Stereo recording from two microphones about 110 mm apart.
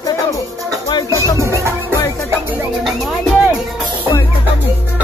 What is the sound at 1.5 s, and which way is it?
Music, 25° right (ahead or behind).